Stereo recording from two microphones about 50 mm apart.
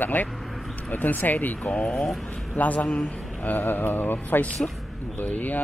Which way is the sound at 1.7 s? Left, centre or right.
Centre.